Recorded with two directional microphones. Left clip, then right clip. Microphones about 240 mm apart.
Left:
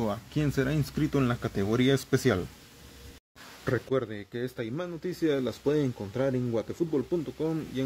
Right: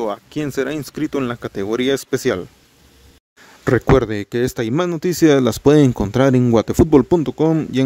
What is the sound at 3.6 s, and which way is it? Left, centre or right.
Speech, right.